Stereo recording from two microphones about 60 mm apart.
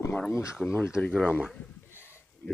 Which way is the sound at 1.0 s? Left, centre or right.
Left.